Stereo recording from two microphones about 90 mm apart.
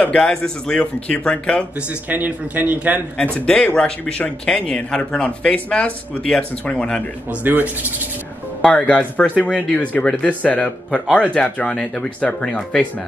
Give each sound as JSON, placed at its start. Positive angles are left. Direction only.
{"t": 0.0, "sound": "speech", "side_deg": 10}
{"t": 2.0, "sound": "a man's voice", "side_deg": -20}
{"t": 3.3, "sound": "speech", "side_deg": 15}
{"t": 7.2, "sound": "a man's voice", "side_deg": -20}
{"t": 8.6, "sound": "speech", "side_deg": 15}